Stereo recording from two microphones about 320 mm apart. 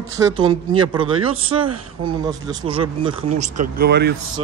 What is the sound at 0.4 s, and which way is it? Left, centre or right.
A man's voice, centre.